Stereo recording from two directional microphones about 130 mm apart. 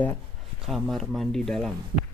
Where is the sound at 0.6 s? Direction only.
Centre (ahead or behind).